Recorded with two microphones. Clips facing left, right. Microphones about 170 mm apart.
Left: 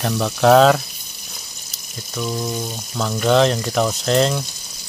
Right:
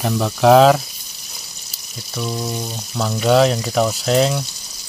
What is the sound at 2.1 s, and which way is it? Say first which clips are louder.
Speech: even; 5° right (ahead or behind).